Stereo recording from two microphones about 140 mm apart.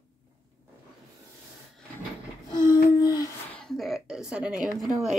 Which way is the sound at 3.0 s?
25° left (ahead or behind).